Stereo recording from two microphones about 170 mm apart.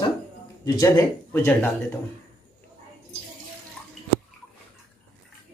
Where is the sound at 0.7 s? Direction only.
20° left (ahead or behind).